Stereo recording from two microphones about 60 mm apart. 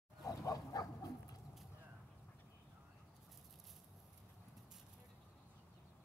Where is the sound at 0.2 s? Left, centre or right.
Left.